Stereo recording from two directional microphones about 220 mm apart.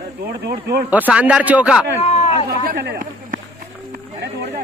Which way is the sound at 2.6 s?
45° right (ahead or behind).